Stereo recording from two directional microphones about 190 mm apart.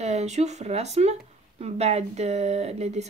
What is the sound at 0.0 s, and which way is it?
A woman's voice, 35° right (ahead or behind).